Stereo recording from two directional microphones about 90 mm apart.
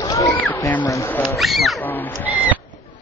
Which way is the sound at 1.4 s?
Centre (ahead or behind).